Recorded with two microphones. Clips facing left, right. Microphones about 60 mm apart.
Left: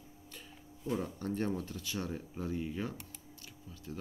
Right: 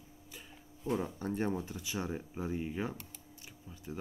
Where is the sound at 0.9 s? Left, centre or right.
Centre.